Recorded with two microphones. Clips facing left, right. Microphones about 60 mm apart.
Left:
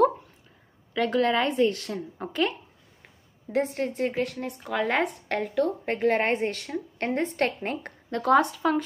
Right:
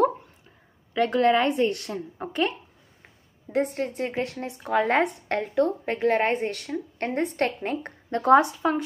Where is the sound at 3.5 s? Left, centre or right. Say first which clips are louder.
Right 1 dB; centre.